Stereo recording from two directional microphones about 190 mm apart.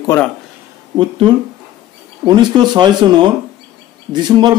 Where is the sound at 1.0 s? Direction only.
25° right (ahead or behind).